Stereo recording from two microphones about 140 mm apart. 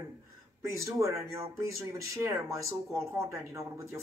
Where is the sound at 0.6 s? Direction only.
20° right (ahead or behind).